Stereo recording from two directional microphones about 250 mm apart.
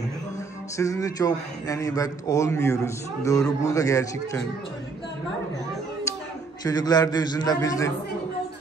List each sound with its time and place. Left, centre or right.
0.7 s a man's voice: centre
6.6 s a man's voice: centre